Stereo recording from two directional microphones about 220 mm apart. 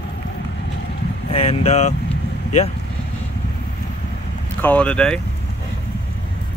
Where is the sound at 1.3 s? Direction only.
25° left (ahead or behind).